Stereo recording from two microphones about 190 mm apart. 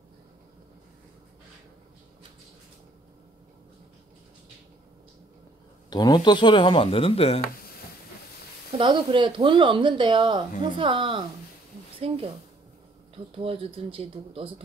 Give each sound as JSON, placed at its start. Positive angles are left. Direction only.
{"t": 5.9, "sound": "speech", "side_deg": 20}
{"t": 8.7, "sound": "speech", "side_deg": -25}
{"t": 13.4, "sound": "speech", "side_deg": -30}